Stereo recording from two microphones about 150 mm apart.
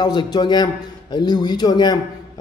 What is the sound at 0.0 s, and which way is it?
Speech, 30° left (ahead or behind).